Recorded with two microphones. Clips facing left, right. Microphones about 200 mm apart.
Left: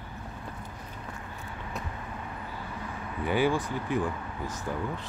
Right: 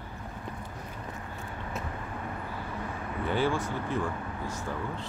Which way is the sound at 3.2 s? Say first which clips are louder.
Left 2 dB; 10° left (ahead or behind).